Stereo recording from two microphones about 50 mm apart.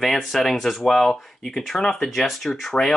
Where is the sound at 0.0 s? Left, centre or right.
Centre.